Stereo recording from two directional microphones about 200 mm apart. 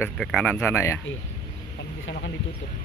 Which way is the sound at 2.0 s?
60° left (ahead or behind).